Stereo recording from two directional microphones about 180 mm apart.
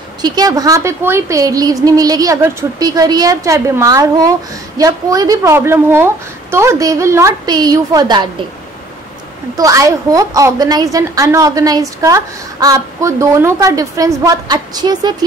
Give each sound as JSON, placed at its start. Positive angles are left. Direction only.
{"t": 0.2, "sound": "a woman's voice", "side_deg": -20}
{"t": 9.6, "sound": "a woman's voice", "side_deg": -20}